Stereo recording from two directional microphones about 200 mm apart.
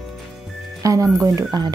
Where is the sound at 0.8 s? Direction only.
15° right (ahead or behind).